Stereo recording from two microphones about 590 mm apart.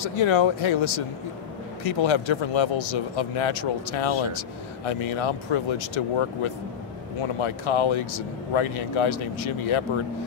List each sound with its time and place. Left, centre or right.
0.0 s speech: left